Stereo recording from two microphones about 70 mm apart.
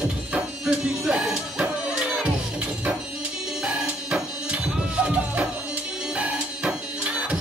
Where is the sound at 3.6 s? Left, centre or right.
Centre.